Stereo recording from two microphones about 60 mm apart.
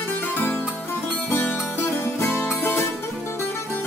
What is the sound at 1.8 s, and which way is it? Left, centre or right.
Music, left.